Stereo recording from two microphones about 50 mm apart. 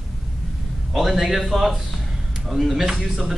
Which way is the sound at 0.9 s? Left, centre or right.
Centre.